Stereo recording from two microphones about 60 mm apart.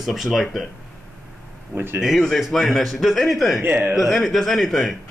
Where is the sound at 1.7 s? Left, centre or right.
Right.